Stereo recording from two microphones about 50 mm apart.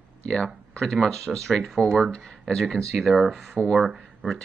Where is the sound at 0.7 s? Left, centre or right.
Centre.